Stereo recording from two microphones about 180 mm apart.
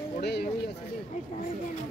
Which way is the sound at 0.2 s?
65° left (ahead or behind).